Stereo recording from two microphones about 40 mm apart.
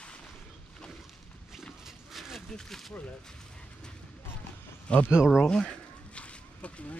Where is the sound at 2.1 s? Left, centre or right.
Centre.